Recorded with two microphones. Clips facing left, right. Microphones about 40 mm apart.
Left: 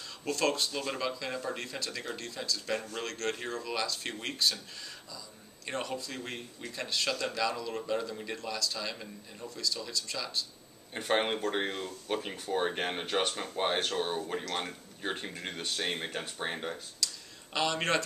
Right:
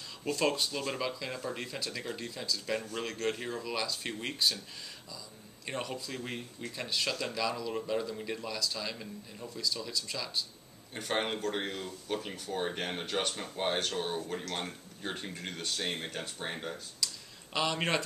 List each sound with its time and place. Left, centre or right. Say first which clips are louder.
0.2 s speech: even; centre
1.6 s speech: even; centre
5.7 s speech: left 1 dB; centre
10.9 s speech: left 3 dB; centre
17.0 s a sound: right 1 dB; centre